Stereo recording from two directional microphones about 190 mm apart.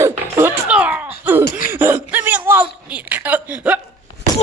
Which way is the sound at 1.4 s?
50° left (ahead or behind).